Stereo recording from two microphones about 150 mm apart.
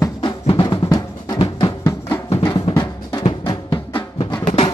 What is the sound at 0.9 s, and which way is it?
Drum, 25° left (ahead or behind).